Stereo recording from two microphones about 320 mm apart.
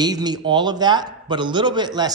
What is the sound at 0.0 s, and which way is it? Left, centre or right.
A man's voice, centre.